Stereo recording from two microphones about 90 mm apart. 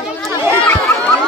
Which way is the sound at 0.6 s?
15° left (ahead or behind).